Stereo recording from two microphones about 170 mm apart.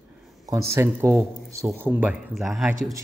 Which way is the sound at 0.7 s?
15° right (ahead or behind).